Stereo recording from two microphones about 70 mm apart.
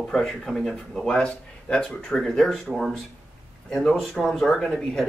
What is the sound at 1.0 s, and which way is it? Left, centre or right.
Speech, centre.